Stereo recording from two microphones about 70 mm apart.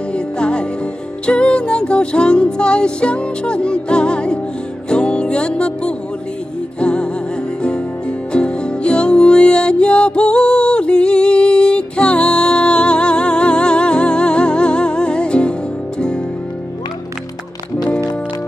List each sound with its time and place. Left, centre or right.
0.1 s music: centre
8.3 s music: centre